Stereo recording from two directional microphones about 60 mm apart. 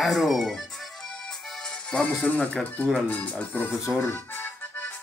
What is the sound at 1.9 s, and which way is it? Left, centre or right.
Speech, left.